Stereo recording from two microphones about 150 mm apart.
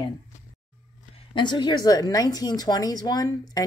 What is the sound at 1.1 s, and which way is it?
Speech, 30° left (ahead or behind).